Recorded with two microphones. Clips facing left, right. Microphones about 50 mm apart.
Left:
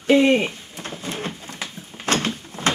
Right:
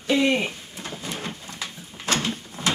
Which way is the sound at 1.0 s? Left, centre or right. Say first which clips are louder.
Left 4 dB; left.